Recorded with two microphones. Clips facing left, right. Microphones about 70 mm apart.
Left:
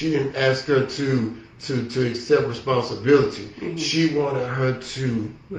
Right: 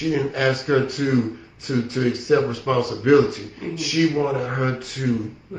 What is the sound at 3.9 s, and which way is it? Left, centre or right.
Speech, centre.